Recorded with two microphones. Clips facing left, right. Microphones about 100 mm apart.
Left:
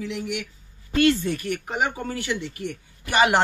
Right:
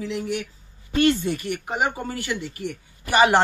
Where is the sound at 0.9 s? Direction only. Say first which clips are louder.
Even; 20° right (ahead or behind).